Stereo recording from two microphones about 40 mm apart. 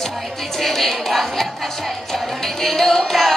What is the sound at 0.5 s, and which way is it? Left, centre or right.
Speech, centre.